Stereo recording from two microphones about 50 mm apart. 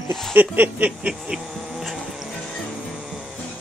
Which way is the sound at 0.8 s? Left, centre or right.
Right.